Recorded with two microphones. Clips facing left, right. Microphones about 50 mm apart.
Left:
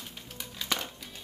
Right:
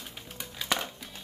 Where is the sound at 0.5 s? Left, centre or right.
Centre.